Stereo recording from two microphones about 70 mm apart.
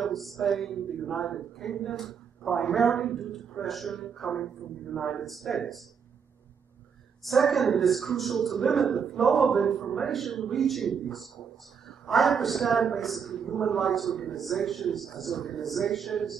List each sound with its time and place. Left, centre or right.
0.0 s speech: centre
7.2 s speech: centre